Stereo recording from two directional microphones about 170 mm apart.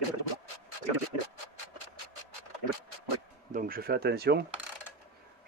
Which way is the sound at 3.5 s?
55° right (ahead or behind).